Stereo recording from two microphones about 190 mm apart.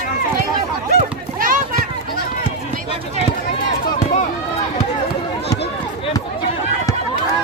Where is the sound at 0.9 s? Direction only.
45° right (ahead or behind).